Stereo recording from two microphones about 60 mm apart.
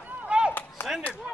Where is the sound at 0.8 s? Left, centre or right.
Left.